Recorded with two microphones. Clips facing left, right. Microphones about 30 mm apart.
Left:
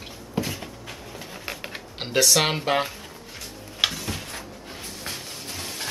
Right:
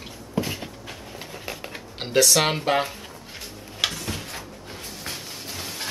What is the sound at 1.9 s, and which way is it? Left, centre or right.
Speech, centre.